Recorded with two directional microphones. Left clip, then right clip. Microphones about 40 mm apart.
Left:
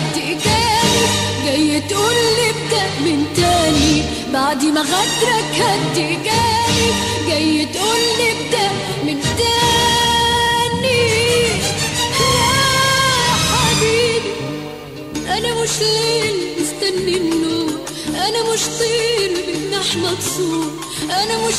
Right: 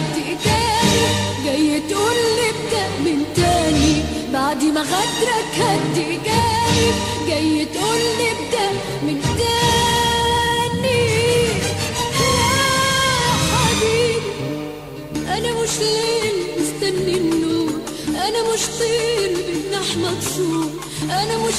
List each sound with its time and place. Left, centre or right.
0.5 s music: right
3.3 s music: right
10.8 s music: right
13.1 s music: right
15.8 s music: right